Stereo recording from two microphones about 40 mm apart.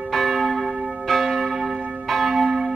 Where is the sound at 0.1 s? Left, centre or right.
Centre.